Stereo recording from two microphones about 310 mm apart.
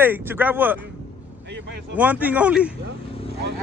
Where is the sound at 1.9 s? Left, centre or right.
Centre.